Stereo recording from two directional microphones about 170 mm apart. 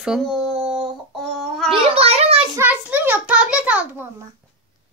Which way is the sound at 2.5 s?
10° right (ahead or behind).